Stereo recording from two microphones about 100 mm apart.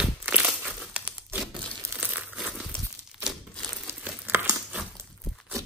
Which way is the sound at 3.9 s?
25° right (ahead or behind).